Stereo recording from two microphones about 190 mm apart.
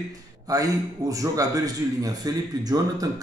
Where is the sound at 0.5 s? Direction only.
20° right (ahead or behind).